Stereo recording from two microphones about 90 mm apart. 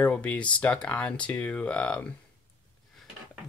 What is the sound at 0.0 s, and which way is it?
Speech, 15° left (ahead or behind).